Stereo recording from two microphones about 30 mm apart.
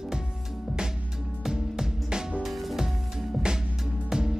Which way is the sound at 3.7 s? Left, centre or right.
Centre.